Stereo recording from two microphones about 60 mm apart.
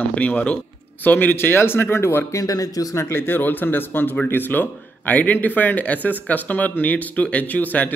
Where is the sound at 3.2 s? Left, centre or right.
Left.